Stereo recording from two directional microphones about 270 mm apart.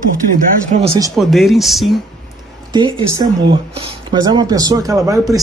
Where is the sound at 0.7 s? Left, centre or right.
Right.